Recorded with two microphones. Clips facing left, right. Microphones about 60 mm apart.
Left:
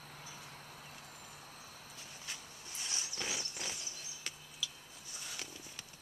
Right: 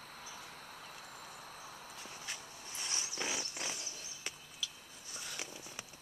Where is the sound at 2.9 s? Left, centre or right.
Centre.